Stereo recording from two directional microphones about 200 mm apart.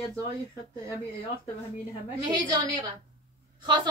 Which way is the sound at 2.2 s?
20° right (ahead or behind).